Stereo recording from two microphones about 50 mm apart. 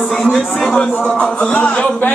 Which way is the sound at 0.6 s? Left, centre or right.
Centre.